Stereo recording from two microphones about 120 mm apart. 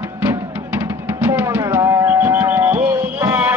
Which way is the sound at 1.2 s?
15° right (ahead or behind).